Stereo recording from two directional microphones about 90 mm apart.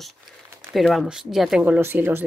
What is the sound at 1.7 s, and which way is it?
Speech, 25° right (ahead or behind).